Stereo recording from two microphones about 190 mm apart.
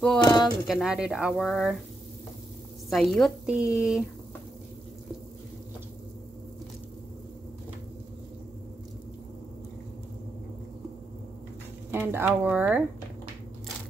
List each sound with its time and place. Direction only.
0.2 s a sound: 20° left (ahead or behind)
0.7 s speech: 5° right (ahead or behind)
2.9 s speech: centre (ahead or behind)
11.9 s speech: 10° right (ahead or behind)